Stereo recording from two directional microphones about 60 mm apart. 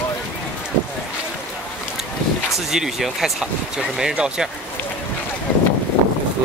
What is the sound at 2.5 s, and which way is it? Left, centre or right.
Speech, centre.